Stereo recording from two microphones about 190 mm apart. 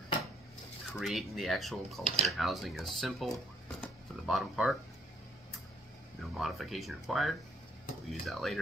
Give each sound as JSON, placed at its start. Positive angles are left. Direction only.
{"t": 0.9, "sound": "speech", "side_deg": 0}
{"t": 2.0, "sound": "speech", "side_deg": -35}
{"t": 2.3, "sound": "speech", "side_deg": 0}
{"t": 3.8, "sound": "a sound", "side_deg": 0}
{"t": 6.3, "sound": "speech", "side_deg": 0}